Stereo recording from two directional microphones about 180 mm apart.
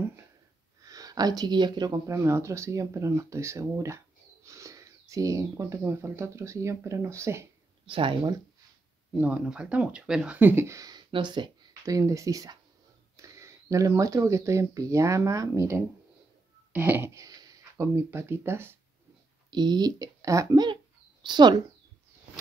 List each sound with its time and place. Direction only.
0.8 s speech: 20° right (ahead or behind)
7.8 s a child's voice: 30° right (ahead or behind)
9.1 s speech: 5° right (ahead or behind)
19.5 s a child's voice: 25° right (ahead or behind)